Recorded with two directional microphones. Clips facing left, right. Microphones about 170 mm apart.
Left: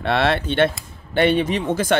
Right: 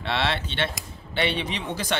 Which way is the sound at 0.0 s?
50° left (ahead or behind).